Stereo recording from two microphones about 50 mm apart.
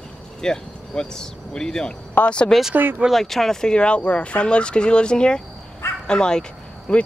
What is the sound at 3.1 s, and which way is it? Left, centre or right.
Speech, centre.